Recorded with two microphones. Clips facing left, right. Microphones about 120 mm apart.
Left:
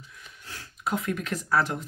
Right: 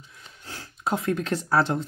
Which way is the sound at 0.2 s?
30° right (ahead or behind).